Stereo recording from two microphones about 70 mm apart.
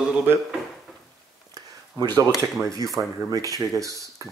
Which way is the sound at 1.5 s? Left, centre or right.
Right.